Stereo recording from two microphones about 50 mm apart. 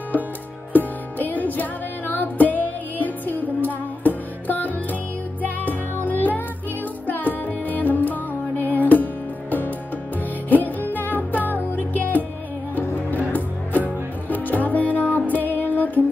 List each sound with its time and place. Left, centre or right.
0.7 s music: left